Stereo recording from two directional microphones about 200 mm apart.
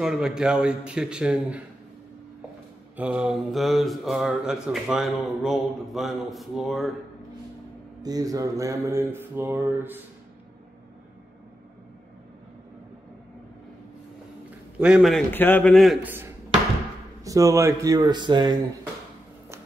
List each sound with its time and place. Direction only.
0.0 s speech: centre (ahead or behind)
3.0 s speech: 5° right (ahead or behind)
8.0 s mantra: 20° right (ahead or behind)
14.8 s speech: centre (ahead or behind)
17.2 s mantra: 15° right (ahead or behind)